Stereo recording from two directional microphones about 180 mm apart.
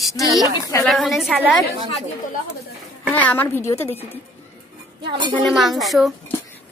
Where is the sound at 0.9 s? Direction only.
Centre (ahead or behind).